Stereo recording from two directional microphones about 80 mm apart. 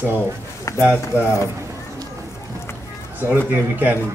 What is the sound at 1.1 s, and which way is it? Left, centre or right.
Speech, left.